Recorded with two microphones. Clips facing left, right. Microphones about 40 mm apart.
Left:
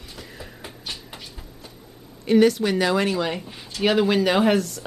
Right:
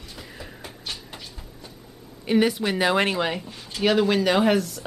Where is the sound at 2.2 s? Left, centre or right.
Centre.